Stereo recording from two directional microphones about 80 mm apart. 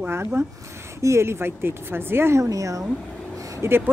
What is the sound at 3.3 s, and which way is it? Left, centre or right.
Vehicle, right.